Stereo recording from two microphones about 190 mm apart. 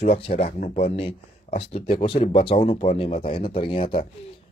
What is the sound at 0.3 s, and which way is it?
Speech, 45° left (ahead or behind).